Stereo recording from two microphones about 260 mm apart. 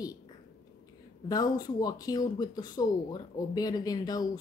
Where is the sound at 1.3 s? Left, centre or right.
Centre.